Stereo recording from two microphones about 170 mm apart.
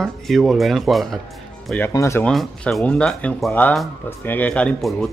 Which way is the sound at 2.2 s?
5° left (ahead or behind).